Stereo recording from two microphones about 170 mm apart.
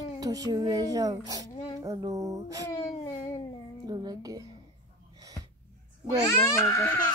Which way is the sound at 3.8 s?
20° right (ahead or behind).